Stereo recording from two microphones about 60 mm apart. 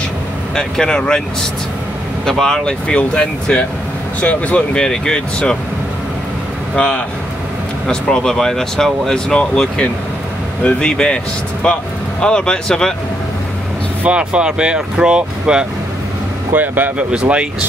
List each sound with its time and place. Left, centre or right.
0.6 s speech: centre
2.2 s speech: centre
6.7 s speech: centre
14.0 s speech: centre
16.5 s speech: right
17.1 s speech: centre